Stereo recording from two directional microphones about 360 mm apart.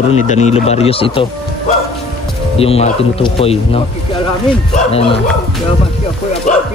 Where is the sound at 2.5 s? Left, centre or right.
Centre.